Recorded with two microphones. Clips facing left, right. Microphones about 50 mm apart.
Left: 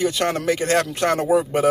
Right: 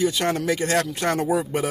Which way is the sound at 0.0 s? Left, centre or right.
Left.